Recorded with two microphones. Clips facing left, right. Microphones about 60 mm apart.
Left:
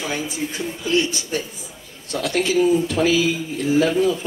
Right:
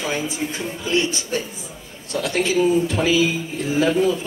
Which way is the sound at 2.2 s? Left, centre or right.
Right.